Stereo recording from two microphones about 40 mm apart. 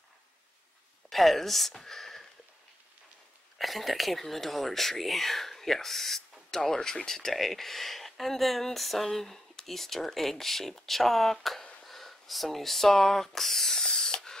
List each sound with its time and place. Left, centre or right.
1.1 s speech: centre
3.5 s speech: centre
13.8 s spray: centre